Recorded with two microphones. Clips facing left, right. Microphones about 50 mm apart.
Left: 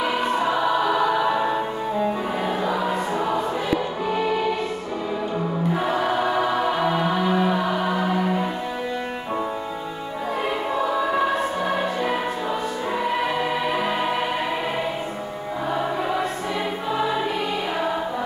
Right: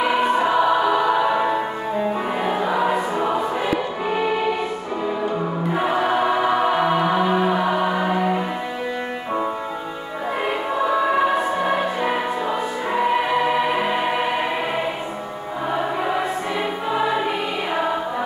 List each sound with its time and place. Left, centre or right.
0.0 s music: centre
5.8 s music: centre
10.7 s choir: centre
12.4 s music: centre
15.7 s music: centre